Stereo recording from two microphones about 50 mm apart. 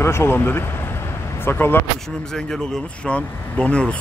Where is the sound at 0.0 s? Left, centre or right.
Left.